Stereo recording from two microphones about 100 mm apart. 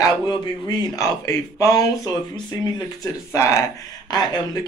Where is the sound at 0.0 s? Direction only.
40° left (ahead or behind).